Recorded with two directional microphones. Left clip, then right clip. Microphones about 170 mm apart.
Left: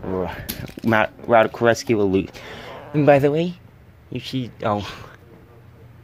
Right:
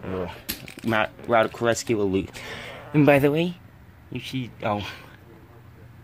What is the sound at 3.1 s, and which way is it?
Speech, centre (ahead or behind).